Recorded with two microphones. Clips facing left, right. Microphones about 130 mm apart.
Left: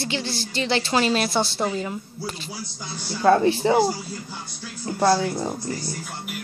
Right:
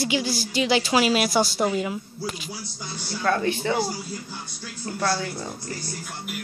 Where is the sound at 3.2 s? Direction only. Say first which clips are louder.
Left 6 dB; 30° left (ahead or behind).